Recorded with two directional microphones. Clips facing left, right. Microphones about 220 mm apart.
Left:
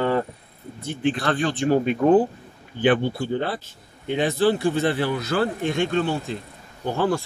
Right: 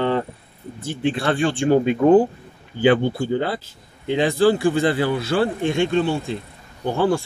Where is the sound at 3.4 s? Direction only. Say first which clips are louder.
Right 2 dB; 90° right.